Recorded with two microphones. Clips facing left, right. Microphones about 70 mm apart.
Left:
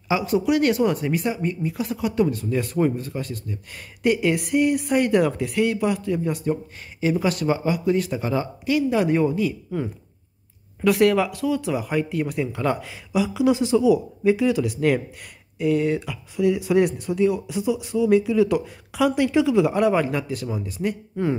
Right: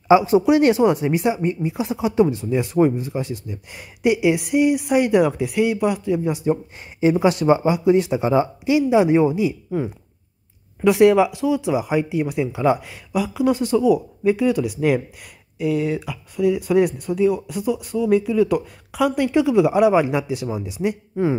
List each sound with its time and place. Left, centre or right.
0.1 s speech: right